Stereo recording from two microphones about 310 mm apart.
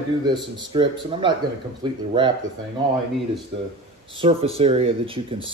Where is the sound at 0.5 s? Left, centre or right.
Centre.